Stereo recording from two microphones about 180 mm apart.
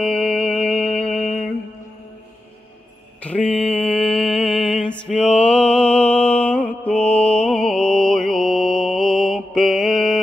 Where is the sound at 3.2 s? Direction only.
5° left (ahead or behind).